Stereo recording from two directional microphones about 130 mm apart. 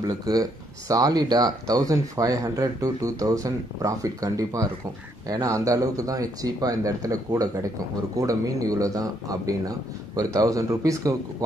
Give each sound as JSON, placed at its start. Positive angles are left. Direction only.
{"t": 0.0, "sound": "speech", "side_deg": -30}